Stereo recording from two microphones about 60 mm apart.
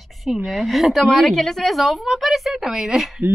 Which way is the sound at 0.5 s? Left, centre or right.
Centre.